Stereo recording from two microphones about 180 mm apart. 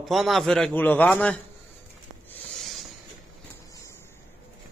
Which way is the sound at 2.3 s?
Centre (ahead or behind).